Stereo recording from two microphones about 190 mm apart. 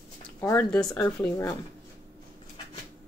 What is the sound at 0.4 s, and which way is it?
Speech, 10° left (ahead or behind).